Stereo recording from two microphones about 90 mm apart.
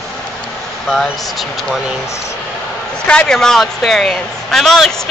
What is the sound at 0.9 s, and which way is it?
Speech, centre (ahead or behind).